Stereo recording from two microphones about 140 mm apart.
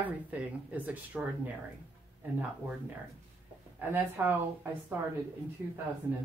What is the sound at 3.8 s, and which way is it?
Speech, 15° right (ahead or behind).